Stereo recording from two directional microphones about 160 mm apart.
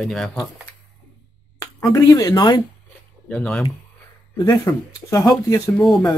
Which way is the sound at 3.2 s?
5° left (ahead or behind).